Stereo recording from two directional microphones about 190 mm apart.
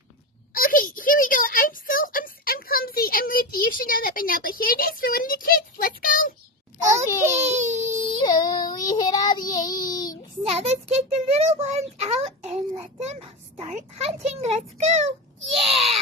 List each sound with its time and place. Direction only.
0.6 s a sound: 45° left (ahead or behind)
7.4 s a child's voice: 40° right (ahead or behind)
7.9 s a sound: 40° right (ahead or behind)
8.2 s child singing: 20° left (ahead or behind)
8.6 s speech: 20° left (ahead or behind)
10.5 s a child's voice: 35° right (ahead or behind)